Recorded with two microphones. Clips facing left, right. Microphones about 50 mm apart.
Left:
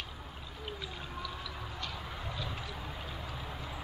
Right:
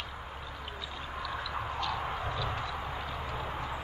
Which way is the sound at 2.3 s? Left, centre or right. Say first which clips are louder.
Right 6 dB; right.